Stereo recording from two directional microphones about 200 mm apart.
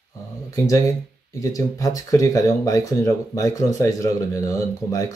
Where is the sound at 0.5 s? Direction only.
15° left (ahead or behind).